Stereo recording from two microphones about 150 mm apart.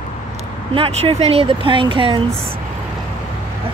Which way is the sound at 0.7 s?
40° right (ahead or behind).